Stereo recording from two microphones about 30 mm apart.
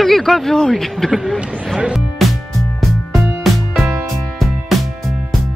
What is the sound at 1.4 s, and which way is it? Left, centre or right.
Music, right.